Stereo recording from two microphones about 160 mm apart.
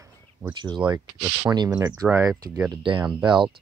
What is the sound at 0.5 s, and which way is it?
Speech, 30° right (ahead or behind).